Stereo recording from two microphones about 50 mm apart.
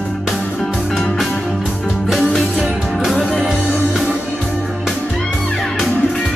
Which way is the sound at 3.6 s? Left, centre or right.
Left.